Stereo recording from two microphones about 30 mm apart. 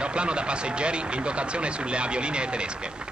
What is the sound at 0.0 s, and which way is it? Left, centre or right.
A man's voice, right.